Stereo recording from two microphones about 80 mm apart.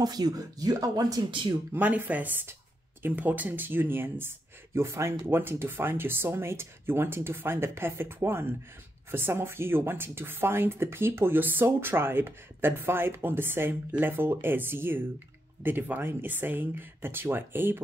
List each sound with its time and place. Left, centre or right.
0.0 s speech: right
1.7 s speech: right